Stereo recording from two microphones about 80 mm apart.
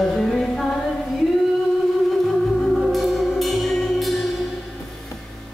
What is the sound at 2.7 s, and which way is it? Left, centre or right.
Music, centre.